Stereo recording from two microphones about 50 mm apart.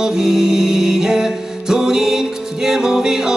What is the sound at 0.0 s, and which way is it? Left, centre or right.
Music, centre.